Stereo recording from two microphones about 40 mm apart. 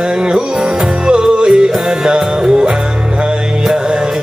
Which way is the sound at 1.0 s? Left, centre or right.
Centre.